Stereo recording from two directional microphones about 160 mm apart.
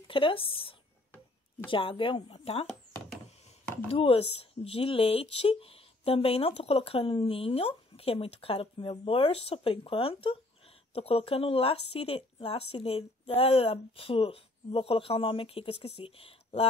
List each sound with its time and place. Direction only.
0.1 s a woman's voice: 35° left (ahead or behind)